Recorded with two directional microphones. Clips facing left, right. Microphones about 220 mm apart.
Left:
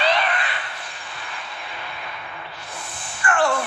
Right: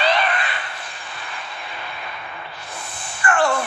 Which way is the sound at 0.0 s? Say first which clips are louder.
Right 1 dB; 45° right (ahead or behind).